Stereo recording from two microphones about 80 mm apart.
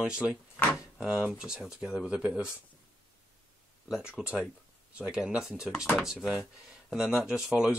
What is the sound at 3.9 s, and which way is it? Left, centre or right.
Speech, centre.